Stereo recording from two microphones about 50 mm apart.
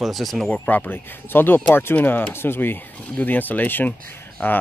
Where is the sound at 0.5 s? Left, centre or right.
Left.